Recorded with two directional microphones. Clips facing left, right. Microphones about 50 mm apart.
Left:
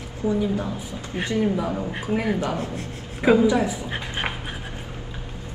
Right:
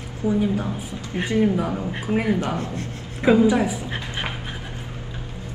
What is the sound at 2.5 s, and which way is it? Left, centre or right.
Speech, centre.